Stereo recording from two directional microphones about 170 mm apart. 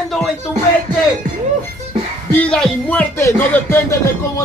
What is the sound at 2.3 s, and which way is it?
Speech, 5° left (ahead or behind).